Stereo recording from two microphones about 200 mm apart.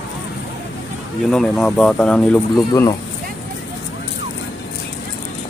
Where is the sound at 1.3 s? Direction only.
Centre (ahead or behind).